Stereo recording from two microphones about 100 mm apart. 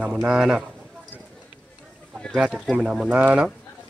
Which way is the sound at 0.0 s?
10° right (ahead or behind).